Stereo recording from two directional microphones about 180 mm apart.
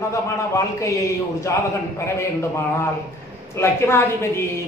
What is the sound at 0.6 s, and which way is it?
Speech, 15° left (ahead or behind).